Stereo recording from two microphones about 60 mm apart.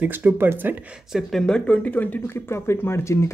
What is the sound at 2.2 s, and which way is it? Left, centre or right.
Speech, left.